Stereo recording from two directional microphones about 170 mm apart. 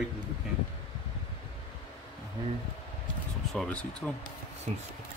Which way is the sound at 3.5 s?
5° left (ahead or behind).